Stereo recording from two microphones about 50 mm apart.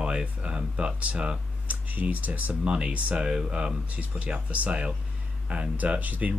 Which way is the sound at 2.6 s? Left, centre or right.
Right.